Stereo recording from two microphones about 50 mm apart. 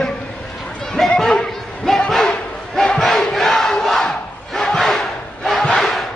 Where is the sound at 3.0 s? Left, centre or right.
Centre.